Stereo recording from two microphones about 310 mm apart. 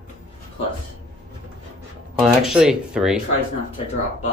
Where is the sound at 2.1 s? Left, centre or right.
Centre.